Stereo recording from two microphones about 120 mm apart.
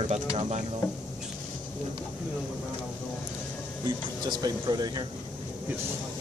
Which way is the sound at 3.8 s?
35° right (ahead or behind).